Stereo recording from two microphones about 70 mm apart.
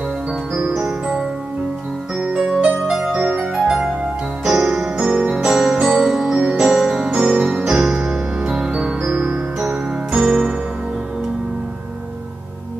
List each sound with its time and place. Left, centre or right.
2.1 s music: centre
3.2 s music: right
3.6 s music: centre
5.3 s music: centre